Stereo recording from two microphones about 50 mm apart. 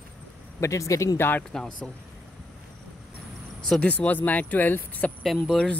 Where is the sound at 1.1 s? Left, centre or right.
Left.